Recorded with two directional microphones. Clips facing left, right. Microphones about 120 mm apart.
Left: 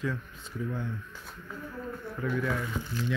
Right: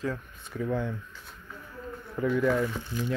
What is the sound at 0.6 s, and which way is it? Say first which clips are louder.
Speech: right 5 dB; 90° right.